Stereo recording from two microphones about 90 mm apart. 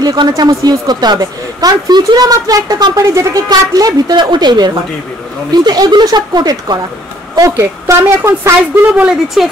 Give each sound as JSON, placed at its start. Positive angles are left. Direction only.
{"t": 0.0, "sound": "a woman's voice", "side_deg": -50}
{"t": 7.3, "sound": "a woman's voice", "side_deg": -35}
{"t": 7.8, "sound": "speech", "side_deg": -20}
{"t": 8.9, "sound": "speech", "side_deg": -5}